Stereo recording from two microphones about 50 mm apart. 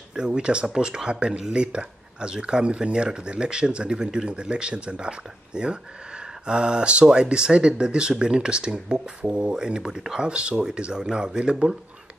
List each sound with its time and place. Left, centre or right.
0.1 s speech: centre